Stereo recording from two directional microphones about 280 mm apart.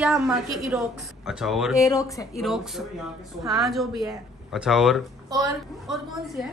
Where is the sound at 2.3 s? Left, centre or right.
Centre.